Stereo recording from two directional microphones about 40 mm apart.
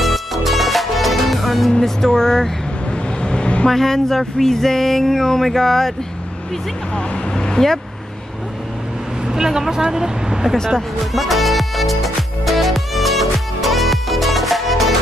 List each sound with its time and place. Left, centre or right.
0.0 s music: centre
1.7 s speech: centre
2.9 s vehicle: left
3.6 s speech: centre
7.0 s speech: centre
9.2 s speech: centre
10.7 s music: centre